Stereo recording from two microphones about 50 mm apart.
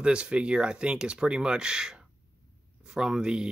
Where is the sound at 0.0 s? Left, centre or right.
Centre.